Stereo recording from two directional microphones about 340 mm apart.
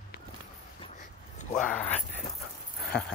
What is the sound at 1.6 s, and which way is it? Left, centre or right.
Speech, centre.